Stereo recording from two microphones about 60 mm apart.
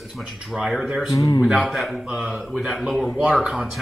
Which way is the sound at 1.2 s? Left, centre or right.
Left.